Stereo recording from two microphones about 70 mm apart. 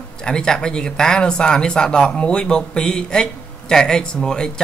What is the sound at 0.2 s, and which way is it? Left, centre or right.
Speech, centre.